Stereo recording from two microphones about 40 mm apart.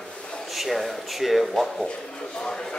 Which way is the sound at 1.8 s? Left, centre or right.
Centre.